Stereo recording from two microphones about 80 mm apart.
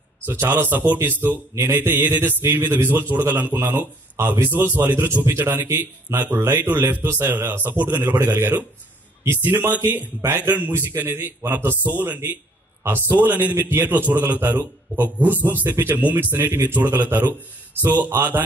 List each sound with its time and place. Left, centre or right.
0.2 s a man's voice: right